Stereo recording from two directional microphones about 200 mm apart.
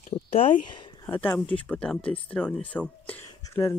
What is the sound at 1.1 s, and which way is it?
Speech, 5° left (ahead or behind).